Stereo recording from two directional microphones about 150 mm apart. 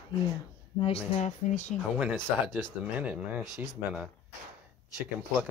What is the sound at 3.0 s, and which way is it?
Speech, 10° right (ahead or behind).